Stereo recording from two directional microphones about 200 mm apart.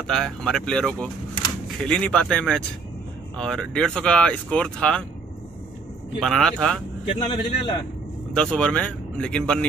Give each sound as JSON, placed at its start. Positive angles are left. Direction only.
{"t": 0.0, "sound": "speech", "side_deg": 0}
{"t": 6.2, "sound": "speech", "side_deg": 5}
{"t": 7.1, "sound": "speech", "side_deg": 30}
{"t": 8.4, "sound": "speech", "side_deg": 5}